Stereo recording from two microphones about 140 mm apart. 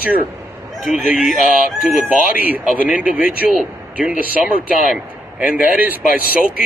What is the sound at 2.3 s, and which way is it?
Speech, 90° left.